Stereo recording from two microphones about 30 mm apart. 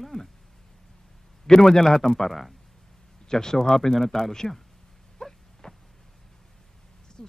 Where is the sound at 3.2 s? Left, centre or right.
Centre.